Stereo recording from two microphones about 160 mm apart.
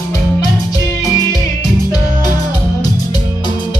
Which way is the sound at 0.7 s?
20° left (ahead or behind).